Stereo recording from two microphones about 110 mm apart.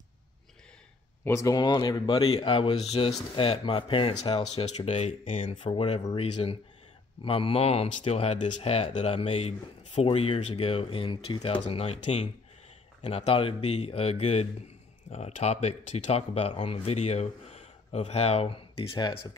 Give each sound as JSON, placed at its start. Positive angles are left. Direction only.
{"t": 1.2, "sound": "speech", "side_deg": 30}
{"t": 4.2, "sound": "speech", "side_deg": 70}
{"t": 5.5, "sound": "speech", "side_deg": 55}
{"t": 6.0, "sound": "speech", "side_deg": 80}
{"t": 13.0, "sound": "speech", "side_deg": 70}
{"t": 15.0, "sound": "speech", "side_deg": 90}
{"t": 18.9, "sound": "speech", "side_deg": 45}